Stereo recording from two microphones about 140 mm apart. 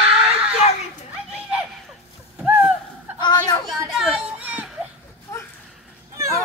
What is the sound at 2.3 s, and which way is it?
Gasp, 5° right (ahead or behind).